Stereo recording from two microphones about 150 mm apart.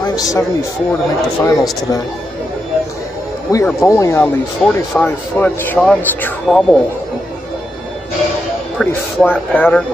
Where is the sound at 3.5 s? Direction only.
15° left (ahead or behind).